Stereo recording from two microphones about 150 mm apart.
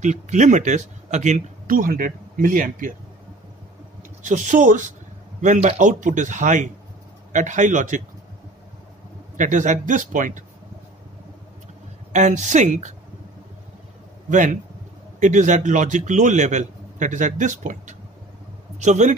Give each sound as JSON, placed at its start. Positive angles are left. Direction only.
{"t": 0.0, "sound": "speech", "side_deg": -55}
{"t": 4.2, "sound": "speech", "side_deg": -55}
{"t": 9.4, "sound": "speech", "side_deg": -55}
{"t": 12.1, "sound": "speech", "side_deg": -55}
{"t": 14.3, "sound": "speech", "side_deg": -60}